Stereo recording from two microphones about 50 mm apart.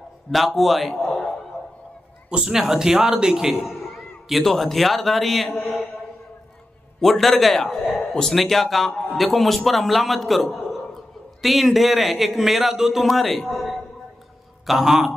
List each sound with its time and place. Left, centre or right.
0.3 s a man's voice: centre
2.2 s speech: centre
2.5 s speech: centre
3.6 s a man's voice: centre
7.0 s a man's voice: centre